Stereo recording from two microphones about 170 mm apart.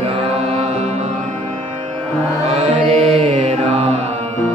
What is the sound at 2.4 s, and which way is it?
Music, 40° right (ahead or behind).